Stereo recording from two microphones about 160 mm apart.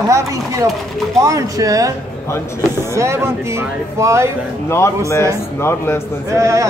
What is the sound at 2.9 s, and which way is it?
Speech, 15° right (ahead or behind).